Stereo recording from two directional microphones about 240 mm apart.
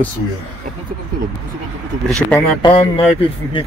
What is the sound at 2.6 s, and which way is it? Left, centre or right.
Speech, left.